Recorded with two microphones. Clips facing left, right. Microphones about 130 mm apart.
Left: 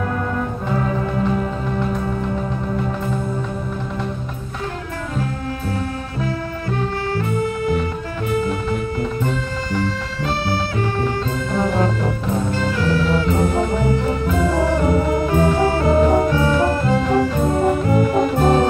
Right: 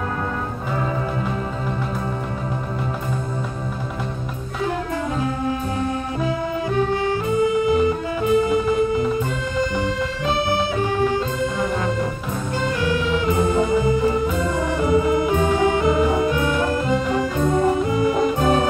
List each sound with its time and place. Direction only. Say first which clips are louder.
7.1 s music: right 2 dB; 20° right (ahead or behind)
9.8 s music: even; 15° right (ahead or behind)
12.8 s music: left 2 dB; 15° right (ahead or behind)
14.9 s organ: even; 20° right (ahead or behind)
15.4 s music: left 1 dB; 15° right (ahead or behind)
16.3 s music: left 3 dB; 35° left (ahead or behind)
16.8 s music: left 3 dB; 15° right (ahead or behind)
18.1 s music: left 2 dB; 40° left (ahead or behind)